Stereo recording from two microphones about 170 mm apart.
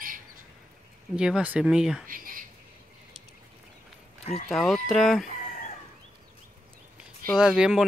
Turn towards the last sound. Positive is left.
turn(degrees=-5)  # may be behind; listen again after turning